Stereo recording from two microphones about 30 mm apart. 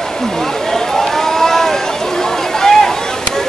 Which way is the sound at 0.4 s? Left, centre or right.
Centre.